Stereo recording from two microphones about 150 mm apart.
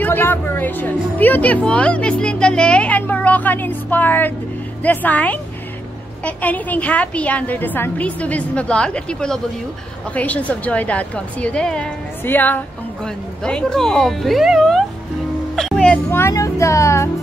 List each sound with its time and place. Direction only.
0.0 s a woman's voice: 15° left (ahead or behind)